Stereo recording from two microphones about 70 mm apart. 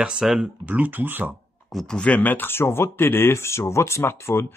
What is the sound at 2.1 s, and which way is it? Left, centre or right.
Speech, left.